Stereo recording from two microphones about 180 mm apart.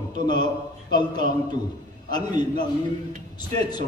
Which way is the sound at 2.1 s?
25° left (ahead or behind).